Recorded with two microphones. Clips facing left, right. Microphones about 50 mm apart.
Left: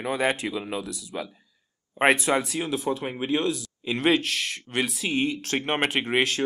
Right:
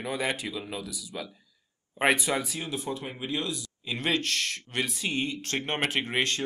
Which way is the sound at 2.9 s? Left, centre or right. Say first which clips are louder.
Left 7 dB; centre.